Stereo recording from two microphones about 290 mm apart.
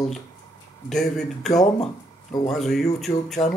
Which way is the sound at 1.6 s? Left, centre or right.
Left.